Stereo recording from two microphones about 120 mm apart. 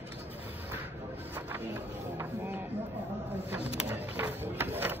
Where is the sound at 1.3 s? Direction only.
20° right (ahead or behind).